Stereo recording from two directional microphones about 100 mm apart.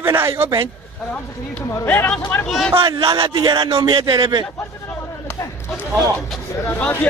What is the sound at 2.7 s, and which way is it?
Speech, 60° right (ahead or behind).